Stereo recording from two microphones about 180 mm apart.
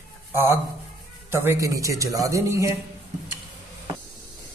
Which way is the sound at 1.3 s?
15° right (ahead or behind).